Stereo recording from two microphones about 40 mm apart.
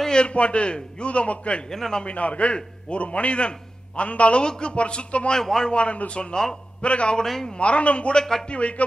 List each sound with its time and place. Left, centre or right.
0.0 s a man's voice: left
1.7 s speech: centre
2.0 s a man's voice: left
5.3 s speech: centre
5.7 s speech: left
6.3 s speech: centre
6.8 s a man's voice: left
7.2 s speech: centre
7.5 s a man's voice: left
8.2 s speech: centre
8.5 s a man's voice: left